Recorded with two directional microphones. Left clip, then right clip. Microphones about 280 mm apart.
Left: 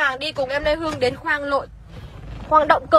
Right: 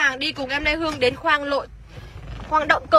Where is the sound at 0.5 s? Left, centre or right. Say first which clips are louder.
Even; centre.